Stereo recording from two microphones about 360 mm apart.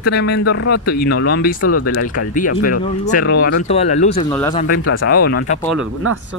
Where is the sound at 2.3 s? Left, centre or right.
Left.